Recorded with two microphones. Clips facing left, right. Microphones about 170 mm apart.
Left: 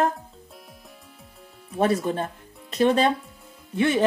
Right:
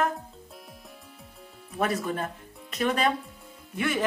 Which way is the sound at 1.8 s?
30° left (ahead or behind).